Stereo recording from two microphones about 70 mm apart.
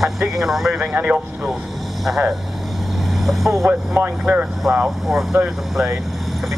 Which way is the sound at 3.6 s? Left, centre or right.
Right.